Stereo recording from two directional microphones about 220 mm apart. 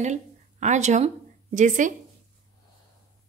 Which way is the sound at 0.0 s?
30° right (ahead or behind).